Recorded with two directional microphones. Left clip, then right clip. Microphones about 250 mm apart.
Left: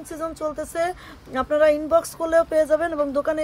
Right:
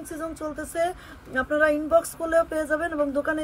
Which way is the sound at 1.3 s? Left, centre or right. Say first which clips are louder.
Left 4 dB; left.